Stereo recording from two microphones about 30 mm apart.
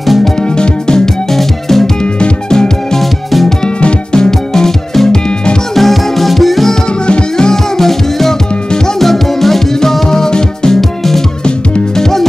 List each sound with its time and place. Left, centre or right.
0.6 s music: left
1.3 s music: centre
2.5 s music: centre
7.3 s music: left
7.8 s music: centre
10.8 s music: centre